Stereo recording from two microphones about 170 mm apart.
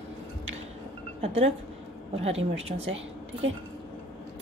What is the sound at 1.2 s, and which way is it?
A woman's voice, 35° right (ahead or behind).